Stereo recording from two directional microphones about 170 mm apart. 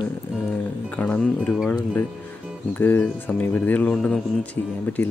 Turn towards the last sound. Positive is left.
turn(degrees=10)  # may be behind; listen again after turning